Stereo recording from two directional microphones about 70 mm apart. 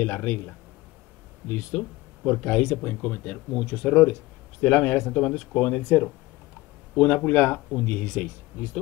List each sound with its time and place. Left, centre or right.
0.0 s speech: left
1.5 s speech: left